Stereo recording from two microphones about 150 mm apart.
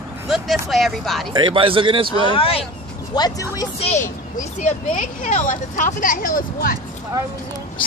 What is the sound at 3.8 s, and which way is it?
Speech, 50° left (ahead or behind).